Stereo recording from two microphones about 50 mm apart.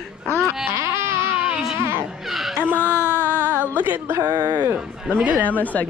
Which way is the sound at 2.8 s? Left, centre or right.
Right.